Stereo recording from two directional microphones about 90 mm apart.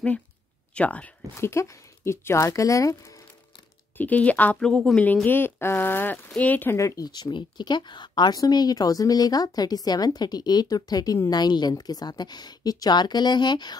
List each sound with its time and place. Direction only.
0.7 s speech: 15° left (ahead or behind)
1.3 s speech: 30° left (ahead or behind)
4.0 s speech: 15° left (ahead or behind)
4.6 s speech: 5° left (ahead or behind)
5.0 s speech: 20° left (ahead or behind)
6.8 s speech: 35° left (ahead or behind)
7.1 s speech: 55° left (ahead or behind)